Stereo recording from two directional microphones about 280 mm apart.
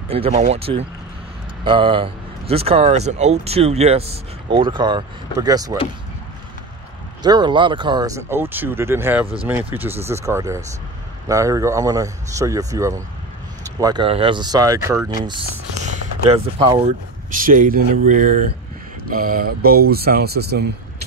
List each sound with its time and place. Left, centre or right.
0.1 s speech: right
7.2 s speech: centre; by 20.6 s right